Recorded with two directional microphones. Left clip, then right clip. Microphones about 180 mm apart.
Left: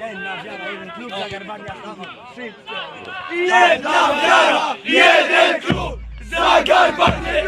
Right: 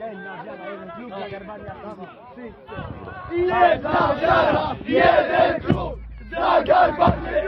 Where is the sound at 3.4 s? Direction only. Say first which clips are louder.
Left 4 dB; 45° right (ahead or behind).